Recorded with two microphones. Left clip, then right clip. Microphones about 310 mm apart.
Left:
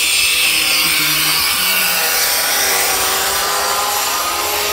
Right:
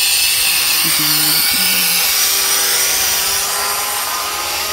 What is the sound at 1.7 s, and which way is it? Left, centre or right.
Rub, centre.